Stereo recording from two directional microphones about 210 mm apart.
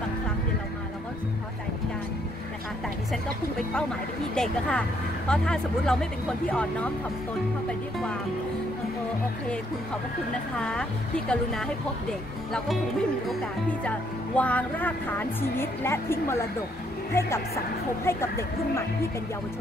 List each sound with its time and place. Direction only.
4.4 s speech: 5° left (ahead or behind)
10.6 s speech: 5° left (ahead or behind)
13.8 s speech: 5° left (ahead or behind)